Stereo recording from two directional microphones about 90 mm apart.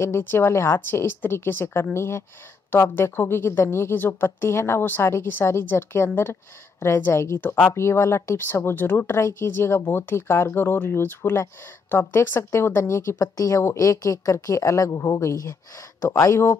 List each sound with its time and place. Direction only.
0.0 s a woman's voice: 25° left (ahead or behind)